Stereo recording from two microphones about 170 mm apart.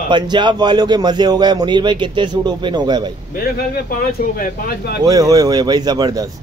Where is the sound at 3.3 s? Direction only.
60° left (ahead or behind).